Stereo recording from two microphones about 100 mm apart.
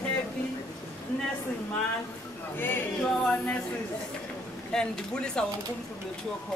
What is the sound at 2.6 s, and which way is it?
Music, 20° left (ahead or behind).